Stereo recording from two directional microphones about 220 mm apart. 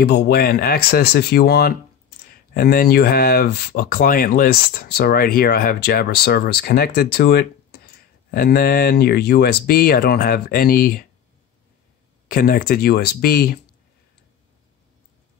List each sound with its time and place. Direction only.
0.0 s speech: 45° left (ahead or behind)
12.3 s speech: 40° left (ahead or behind)